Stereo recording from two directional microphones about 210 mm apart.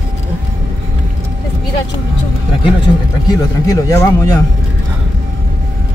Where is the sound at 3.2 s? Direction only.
15° left (ahead or behind).